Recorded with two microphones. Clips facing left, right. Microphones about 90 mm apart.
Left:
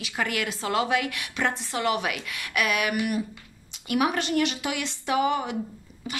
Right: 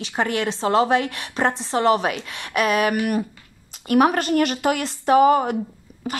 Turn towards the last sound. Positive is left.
turn(degrees=-45)  # may be behind; listen again after turning